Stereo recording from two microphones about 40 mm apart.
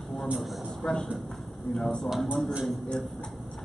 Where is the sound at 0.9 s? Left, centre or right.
Centre.